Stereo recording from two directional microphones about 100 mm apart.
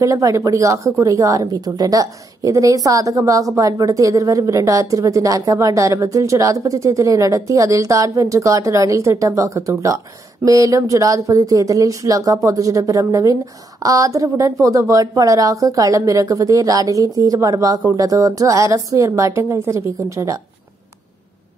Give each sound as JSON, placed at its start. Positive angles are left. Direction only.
{"t": 0.0, "sound": "a woman's voice", "side_deg": -35}